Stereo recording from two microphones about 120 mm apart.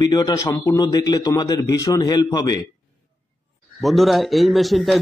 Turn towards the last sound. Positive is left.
turn(degrees=0)  # may be behind; listen again after turning